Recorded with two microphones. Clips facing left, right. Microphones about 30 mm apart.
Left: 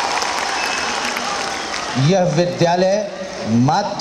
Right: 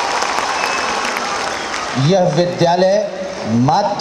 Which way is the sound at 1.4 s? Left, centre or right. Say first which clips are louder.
Right 2 dB; centre.